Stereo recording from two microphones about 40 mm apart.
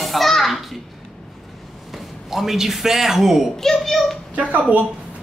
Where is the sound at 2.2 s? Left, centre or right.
Centre.